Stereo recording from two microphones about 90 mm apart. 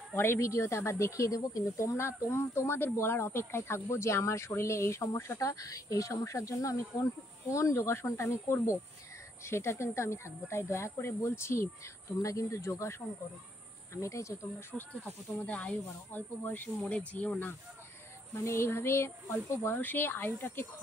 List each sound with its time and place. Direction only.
0.1 s speech: 30° left (ahead or behind)
13.9 s speech: 35° left (ahead or behind)
15.3 s speech: 15° left (ahead or behind)
18.3 s speech: 30° left (ahead or behind)